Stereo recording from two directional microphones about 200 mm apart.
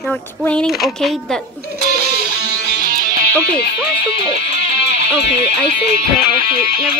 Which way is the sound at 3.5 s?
55° left (ahead or behind).